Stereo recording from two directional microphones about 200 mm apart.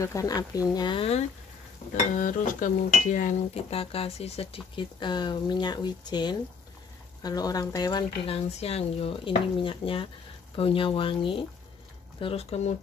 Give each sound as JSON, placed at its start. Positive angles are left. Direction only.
{"t": 0.0, "sound": "speech", "side_deg": 15}
{"t": 2.1, "sound": "speech", "side_deg": 40}
{"t": 8.5, "sound": "speech", "side_deg": 30}